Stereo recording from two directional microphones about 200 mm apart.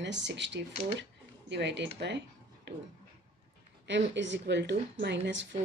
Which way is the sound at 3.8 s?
65° right (ahead or behind).